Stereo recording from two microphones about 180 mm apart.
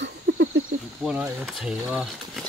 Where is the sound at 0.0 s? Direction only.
80° right.